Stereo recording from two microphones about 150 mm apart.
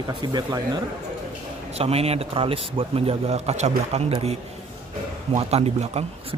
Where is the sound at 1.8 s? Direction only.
40° right (ahead or behind).